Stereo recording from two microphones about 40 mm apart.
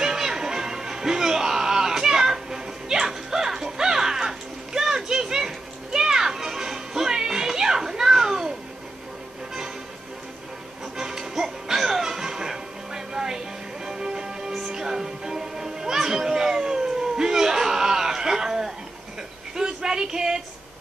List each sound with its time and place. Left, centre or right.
0.0 s music: centre
11.0 s music: centre
19.5 s a sound: centre